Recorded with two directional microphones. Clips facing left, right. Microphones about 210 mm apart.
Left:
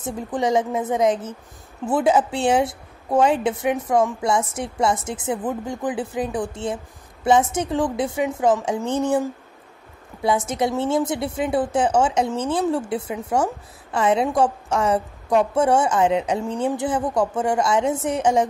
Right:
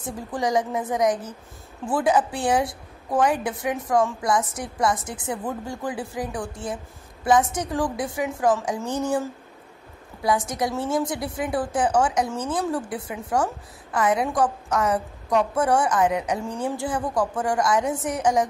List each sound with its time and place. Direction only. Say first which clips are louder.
0.0 s a woman's voice: left 3 dB; 25° left (ahead or behind)